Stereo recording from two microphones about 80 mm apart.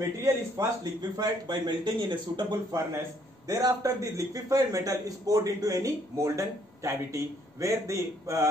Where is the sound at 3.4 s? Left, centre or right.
Right.